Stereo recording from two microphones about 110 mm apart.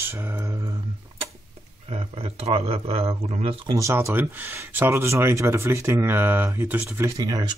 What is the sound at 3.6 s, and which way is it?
Speech, 30° right (ahead or behind).